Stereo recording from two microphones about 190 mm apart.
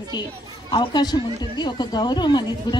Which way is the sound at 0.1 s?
25° left (ahead or behind).